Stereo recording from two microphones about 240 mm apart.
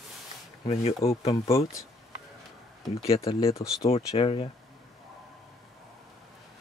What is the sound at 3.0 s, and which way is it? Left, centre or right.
Speech, left.